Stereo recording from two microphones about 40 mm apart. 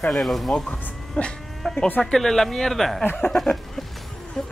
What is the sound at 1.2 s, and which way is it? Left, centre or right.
Sheep, left.